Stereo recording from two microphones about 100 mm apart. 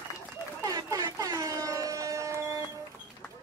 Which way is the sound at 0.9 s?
35° right (ahead or behind).